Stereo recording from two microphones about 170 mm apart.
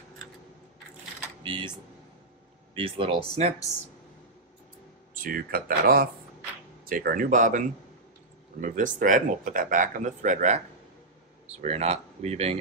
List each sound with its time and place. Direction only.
1.4 s speech: 25° right (ahead or behind)
5.1 s speech: 55° right (ahead or behind); by 12.5 s 40° right (ahead or behind)